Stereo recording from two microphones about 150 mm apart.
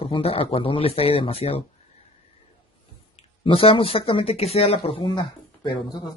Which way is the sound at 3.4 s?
40° left (ahead or behind).